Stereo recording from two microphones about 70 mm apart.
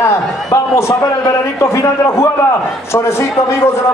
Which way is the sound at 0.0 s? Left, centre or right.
Left.